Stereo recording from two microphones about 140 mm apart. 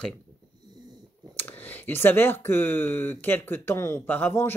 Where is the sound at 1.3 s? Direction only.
15° left (ahead or behind).